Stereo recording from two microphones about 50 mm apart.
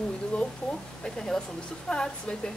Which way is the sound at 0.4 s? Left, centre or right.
Centre.